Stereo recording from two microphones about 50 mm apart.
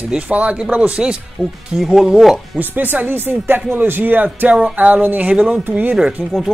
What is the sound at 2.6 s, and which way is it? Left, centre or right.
Speech, right.